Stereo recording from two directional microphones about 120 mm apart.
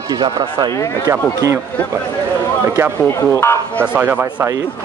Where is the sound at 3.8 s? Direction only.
10° right (ahead or behind).